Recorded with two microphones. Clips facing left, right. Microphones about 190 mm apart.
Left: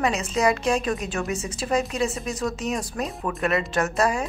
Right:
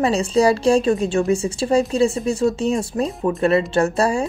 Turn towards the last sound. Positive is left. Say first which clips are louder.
# right 5 dB
turn(degrees=-30)  # may be behind; listen again after turning